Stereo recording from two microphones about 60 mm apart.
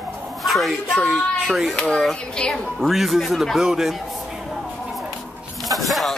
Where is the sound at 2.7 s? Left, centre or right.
Centre.